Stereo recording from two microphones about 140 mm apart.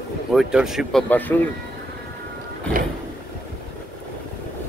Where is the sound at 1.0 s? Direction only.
15° left (ahead or behind).